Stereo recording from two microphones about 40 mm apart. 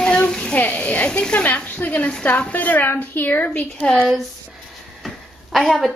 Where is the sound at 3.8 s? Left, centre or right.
Left.